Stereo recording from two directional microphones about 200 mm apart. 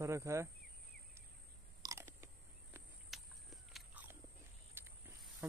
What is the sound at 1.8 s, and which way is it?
Biting, 15° right (ahead or behind).